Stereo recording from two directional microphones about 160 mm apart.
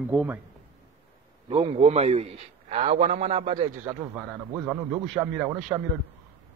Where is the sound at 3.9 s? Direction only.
15° right (ahead or behind).